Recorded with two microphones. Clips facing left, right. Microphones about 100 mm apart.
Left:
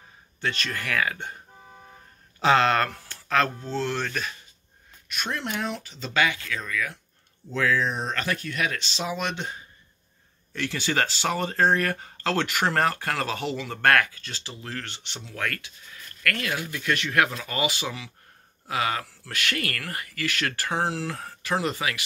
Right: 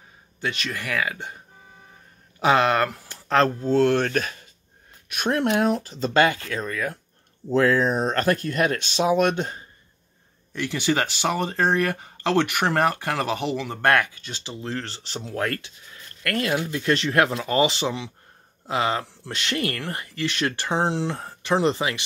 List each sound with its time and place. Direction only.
0.4 s speech: 10° right (ahead or behind)
2.4 s speech: 15° right (ahead or behind)
3.3 s speech: 35° right (ahead or behind)
3.7 s speech: 55° right (ahead or behind)
10.5 s speech: 20° right (ahead or behind)